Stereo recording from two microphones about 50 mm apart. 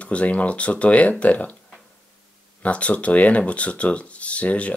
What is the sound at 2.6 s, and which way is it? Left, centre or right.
Speech, left.